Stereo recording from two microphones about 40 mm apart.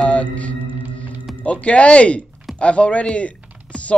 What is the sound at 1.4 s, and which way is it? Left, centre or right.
Speech, left.